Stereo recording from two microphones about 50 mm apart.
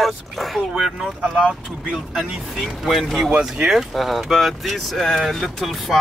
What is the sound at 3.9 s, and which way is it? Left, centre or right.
Speech, centre.